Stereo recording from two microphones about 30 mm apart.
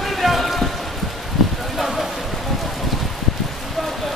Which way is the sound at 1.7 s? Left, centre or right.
Centre.